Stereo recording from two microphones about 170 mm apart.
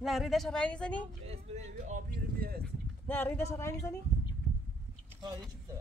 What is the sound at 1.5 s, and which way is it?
Speech, 40° right (ahead or behind).